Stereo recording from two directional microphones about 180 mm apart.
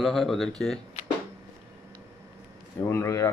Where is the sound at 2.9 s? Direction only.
15° left (ahead or behind).